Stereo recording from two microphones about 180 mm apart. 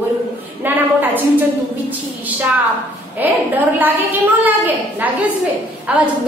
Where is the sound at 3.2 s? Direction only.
10° right (ahead or behind).